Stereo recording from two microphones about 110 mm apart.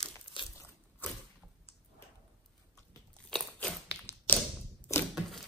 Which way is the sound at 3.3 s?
5° left (ahead or behind).